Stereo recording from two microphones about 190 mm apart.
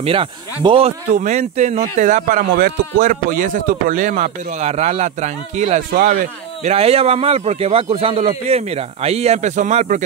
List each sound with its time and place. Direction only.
0.0 s speech: 30° right (ahead or behind)